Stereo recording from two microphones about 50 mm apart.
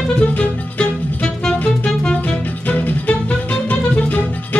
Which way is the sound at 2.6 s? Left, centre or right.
Left.